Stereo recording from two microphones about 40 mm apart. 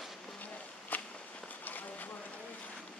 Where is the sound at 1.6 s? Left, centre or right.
Left.